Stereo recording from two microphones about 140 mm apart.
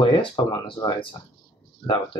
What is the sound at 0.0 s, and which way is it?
Speech, 35° left (ahead or behind).